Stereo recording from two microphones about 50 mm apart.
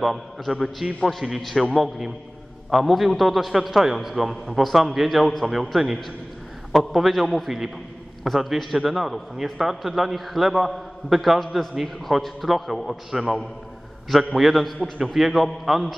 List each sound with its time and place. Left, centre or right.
0.0 s a man's voice: centre